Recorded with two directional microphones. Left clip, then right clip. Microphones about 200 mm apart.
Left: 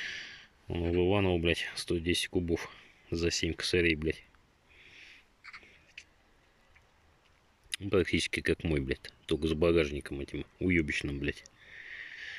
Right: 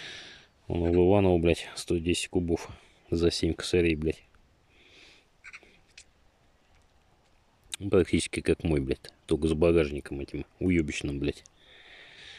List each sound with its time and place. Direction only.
0.0 s a sound: 15° right (ahead or behind)
1.0 s speech: 15° right (ahead or behind)
4.7 s snort: 15° right (ahead or behind)
5.4 s duck: 55° right (ahead or behind)
6.0 s a sound: 20° right (ahead or behind)
7.7 s speech: 15° right (ahead or behind)